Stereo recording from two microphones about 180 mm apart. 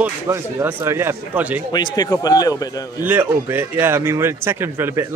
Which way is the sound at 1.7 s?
20° left (ahead or behind).